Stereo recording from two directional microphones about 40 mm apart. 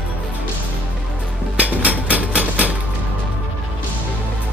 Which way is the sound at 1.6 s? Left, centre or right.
Right.